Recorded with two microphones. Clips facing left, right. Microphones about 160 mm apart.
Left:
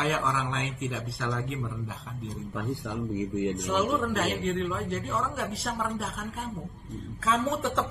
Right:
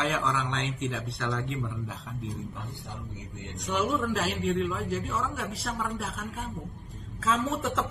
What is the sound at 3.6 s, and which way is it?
A man's voice, centre (ahead or behind).